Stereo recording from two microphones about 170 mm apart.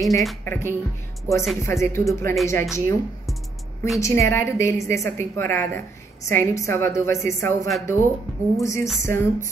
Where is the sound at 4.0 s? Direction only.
15° left (ahead or behind).